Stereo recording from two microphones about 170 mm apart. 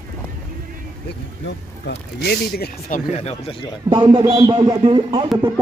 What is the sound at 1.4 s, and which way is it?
Speech, 75° left (ahead or behind).